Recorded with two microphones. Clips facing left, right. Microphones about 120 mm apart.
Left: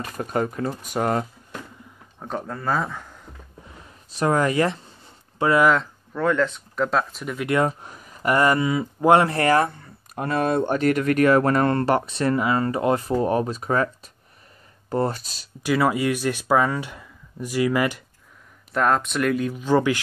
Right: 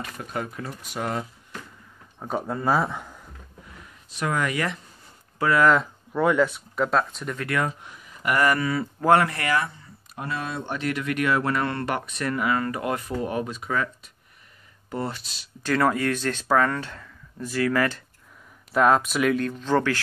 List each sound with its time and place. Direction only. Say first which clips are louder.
0.2 s speech: left 9 dB; 40° left (ahead or behind)
2.1 s speech: right 2 dB; 10° right (ahead or behind)
3.7 s speech: left 1 dB; 30° left (ahead or behind)
6.1 s speech: right 1 dB; 10° right (ahead or behind)
7.3 s speech: left 6 dB; 25° left (ahead or behind)
7.8 s a sound: left 4 dB; 40° left (ahead or behind)
8.4 s speech: left 2 dB; 20° left (ahead or behind)
9.3 s speech: left 7 dB; 40° left (ahead or behind)
9.7 s speech: left 5 dB; 55° left (ahead or behind)
15.6 s speech: left 2 dB; 10° left (ahead or behind)
18.7 s speech: right 2 dB; 5° right (ahead or behind); by 20.0 s 15° left (ahead or behind)